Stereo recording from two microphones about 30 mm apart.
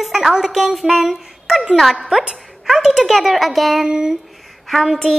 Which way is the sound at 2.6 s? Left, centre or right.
Centre.